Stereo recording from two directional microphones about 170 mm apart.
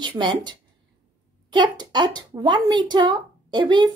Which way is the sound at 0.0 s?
25° right (ahead or behind).